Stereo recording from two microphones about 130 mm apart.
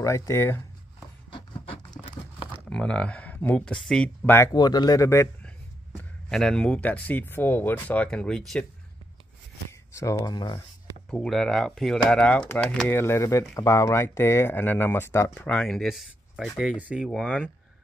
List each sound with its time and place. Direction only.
0.0 s speech: 25° left (ahead or behind)
2.0 s a sound: centre (ahead or behind)
2.7 s speech: 10° left (ahead or behind)
4.2 s speech: 20° left (ahead or behind)
4.6 s speech: 30° left (ahead or behind)
5.9 s speech: 5° left (ahead or behind)
9.7 s a sound: 20° left (ahead or behind)
11.1 s speech: 5° left (ahead or behind)
17.0 s speech: 5° left (ahead or behind)